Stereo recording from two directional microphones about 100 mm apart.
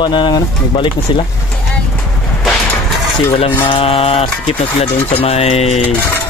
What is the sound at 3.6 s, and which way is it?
Mantra, 65° left (ahead or behind).